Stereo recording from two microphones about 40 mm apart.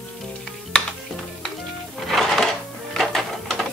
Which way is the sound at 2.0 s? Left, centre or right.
Centre.